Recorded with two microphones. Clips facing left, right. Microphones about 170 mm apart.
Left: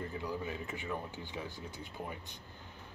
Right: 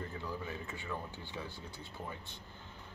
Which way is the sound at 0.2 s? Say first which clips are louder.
Left 3 dB; 15° left (ahead or behind).